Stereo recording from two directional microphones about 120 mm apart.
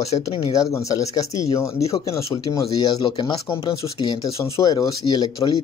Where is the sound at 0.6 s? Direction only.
30° left (ahead or behind).